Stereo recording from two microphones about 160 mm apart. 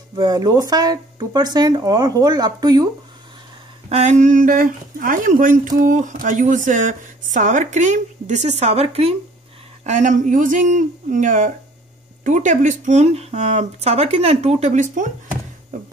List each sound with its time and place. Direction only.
0.1 s speech: 25° right (ahead or behind)
3.9 s a woman's voice: 45° right (ahead or behind)